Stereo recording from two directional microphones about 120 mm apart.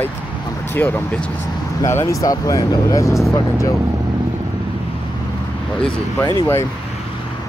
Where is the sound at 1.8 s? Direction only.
25° left (ahead or behind).